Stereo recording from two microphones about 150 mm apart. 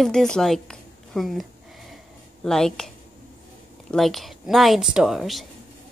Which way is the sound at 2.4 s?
5° left (ahead or behind).